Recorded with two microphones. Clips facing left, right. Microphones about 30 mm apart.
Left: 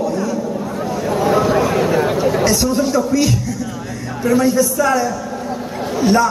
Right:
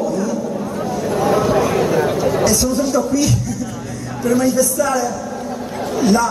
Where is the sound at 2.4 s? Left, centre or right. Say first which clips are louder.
Left 1 dB; left.